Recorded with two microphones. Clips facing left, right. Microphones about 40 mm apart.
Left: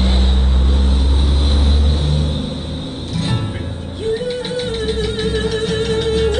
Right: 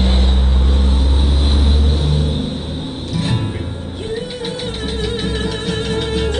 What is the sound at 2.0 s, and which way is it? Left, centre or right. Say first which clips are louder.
Music: right 1 dB; centre.